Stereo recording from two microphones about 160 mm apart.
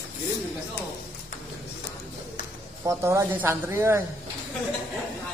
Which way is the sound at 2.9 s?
15° right (ahead or behind).